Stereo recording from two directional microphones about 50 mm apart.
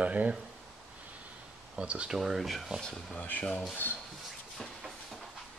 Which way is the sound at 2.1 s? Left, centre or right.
Centre.